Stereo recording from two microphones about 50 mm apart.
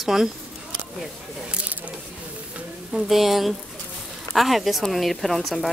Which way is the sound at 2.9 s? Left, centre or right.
Centre.